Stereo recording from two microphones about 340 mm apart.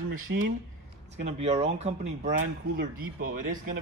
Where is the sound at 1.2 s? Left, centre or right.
Centre.